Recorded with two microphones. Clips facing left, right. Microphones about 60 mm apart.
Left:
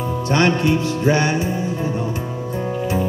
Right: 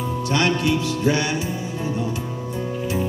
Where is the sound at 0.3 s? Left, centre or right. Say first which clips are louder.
Left 4 dB; left.